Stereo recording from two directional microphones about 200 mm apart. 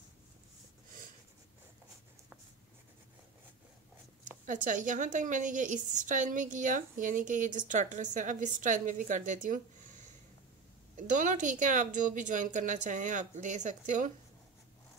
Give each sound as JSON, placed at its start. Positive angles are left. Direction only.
{"t": 4.5, "sound": "a woman's voice", "side_deg": -40}
{"t": 11.0, "sound": "a woman's voice", "side_deg": -40}